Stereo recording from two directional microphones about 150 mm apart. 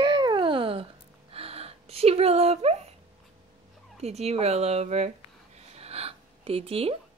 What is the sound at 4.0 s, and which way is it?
Speech, 45° right (ahead or behind).